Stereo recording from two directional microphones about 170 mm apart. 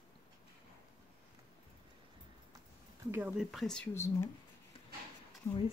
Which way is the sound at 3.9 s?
15° left (ahead or behind).